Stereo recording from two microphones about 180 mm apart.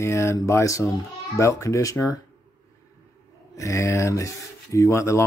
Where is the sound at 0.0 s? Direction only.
15° left (ahead or behind).